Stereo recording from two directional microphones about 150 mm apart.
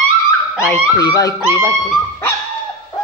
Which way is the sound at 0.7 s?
25° left (ahead or behind).